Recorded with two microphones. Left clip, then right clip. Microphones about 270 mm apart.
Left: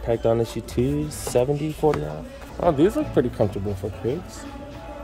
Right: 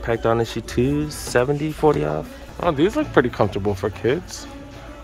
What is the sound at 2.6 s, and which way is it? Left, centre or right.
Speech, centre.